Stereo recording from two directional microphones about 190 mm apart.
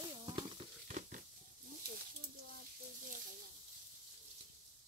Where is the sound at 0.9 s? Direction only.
45° right (ahead or behind).